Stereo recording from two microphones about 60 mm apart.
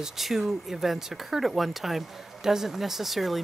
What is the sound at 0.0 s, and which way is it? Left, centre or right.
Speech, centre.